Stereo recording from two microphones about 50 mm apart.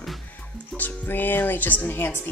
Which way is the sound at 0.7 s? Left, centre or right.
Centre.